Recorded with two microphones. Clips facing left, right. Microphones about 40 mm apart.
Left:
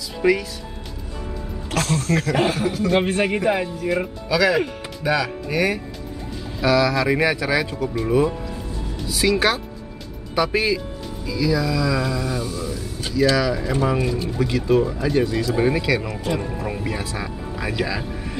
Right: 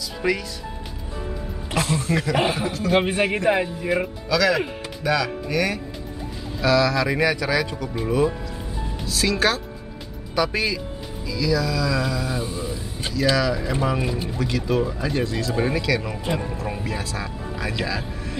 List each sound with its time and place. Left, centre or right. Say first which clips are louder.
0.2 s speech: left 5 dB; centre
1.7 s speech: left 1 dB; centre
4.3 s speech: left 2 dB; centre
9.0 s speech: left 2 dB; centre
12.4 s speech: left 2 dB; right
13.4 s speech: left 2 dB; centre